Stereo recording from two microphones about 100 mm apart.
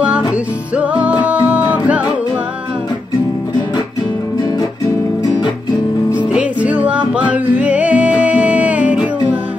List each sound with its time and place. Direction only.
0.7 s music: 15° right (ahead or behind)
5.2 s music: 40° left (ahead or behind)
6.2 s music: 10° right (ahead or behind)